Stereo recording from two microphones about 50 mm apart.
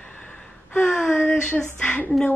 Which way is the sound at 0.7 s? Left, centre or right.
Left.